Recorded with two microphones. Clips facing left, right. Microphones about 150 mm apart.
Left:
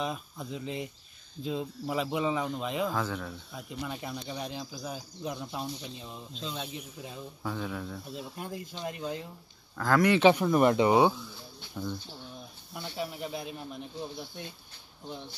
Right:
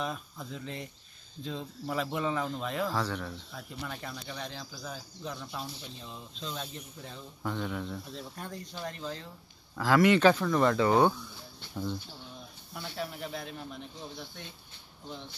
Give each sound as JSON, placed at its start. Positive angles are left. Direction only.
{"t": 0.0, "sound": "speech", "side_deg": 0}
{"t": 6.4, "sound": "speech", "side_deg": 5}
{"t": 9.8, "sound": "speech", "side_deg": 0}
{"t": 10.3, "sound": "speech", "side_deg": 20}
{"t": 12.8, "sound": "speech", "side_deg": 10}